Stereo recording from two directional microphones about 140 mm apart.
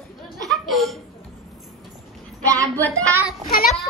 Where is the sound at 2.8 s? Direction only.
10° left (ahead or behind).